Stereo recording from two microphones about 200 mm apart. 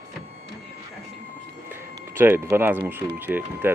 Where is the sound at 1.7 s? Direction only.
10° right (ahead or behind).